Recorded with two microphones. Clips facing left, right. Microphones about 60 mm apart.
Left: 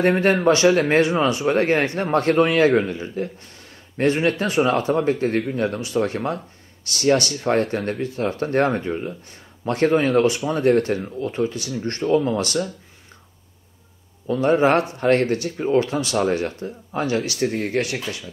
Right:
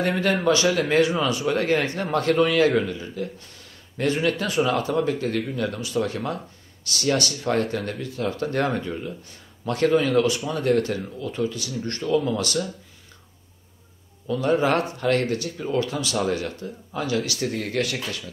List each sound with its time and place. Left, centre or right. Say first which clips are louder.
0.0 s speech: left 5 dB; left
14.2 s speech: left 4 dB; left